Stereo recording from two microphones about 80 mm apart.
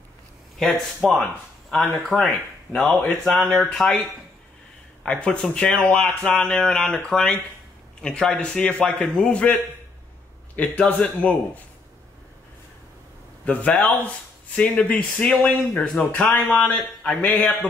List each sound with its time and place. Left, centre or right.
0.6 s speech: centre
3.3 s speech: centre
5.0 s a man's voice: centre
13.5 s speech: centre